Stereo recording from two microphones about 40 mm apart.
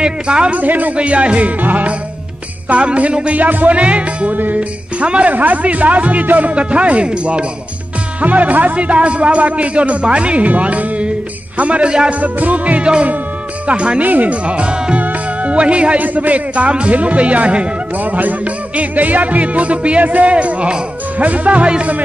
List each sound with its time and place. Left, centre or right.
0.0 s jingle bell: right
0.6 s speech: right
0.9 s speech: right
2.7 s jingle bell: right
3.3 s speech: right
3.7 s speech: right
5.3 s speech: right
13.7 s jingle bell: right
14.0 s speech: right
15.0 s music: right
16.0 s speech: right
17.9 s speech: right